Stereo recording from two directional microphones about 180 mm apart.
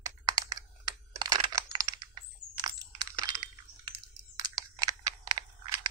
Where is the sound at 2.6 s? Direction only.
20° right (ahead or behind).